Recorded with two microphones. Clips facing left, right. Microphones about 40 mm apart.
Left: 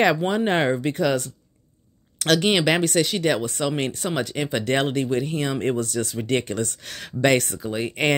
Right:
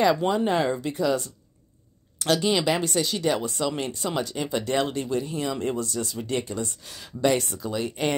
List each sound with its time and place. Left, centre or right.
0.3 s speech: left
0.9 s speech: left
7.5 s speech: left
7.9 s speech: left